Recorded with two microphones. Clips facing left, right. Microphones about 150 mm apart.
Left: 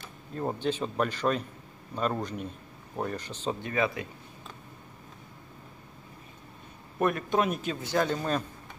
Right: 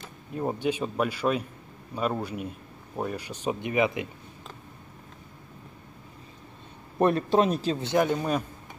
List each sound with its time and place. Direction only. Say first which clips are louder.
0.3 s a man's voice: right 2 dB; 10° right (ahead or behind)
7.0 s speech: right 5 dB; 30° right (ahead or behind); by 8.5 s 10° right (ahead or behind)